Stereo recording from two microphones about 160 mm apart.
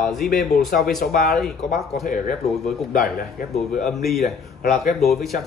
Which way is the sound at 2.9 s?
75° left (ahead or behind).